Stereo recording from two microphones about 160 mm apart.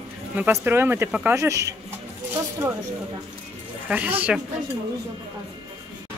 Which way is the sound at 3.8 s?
10° right (ahead or behind).